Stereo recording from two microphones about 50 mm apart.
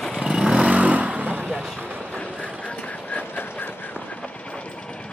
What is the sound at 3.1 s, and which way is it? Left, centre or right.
Vehicle, left.